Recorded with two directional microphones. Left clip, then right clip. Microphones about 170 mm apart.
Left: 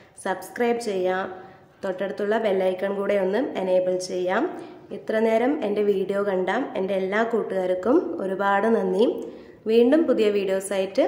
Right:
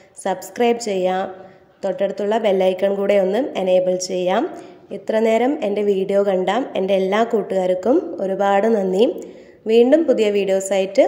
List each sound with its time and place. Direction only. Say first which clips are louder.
0.2 s a woman's voice: right 6 dB; 25° right (ahead or behind)